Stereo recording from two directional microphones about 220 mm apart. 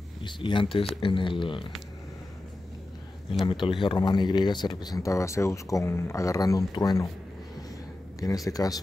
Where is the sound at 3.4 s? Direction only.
20° left (ahead or behind).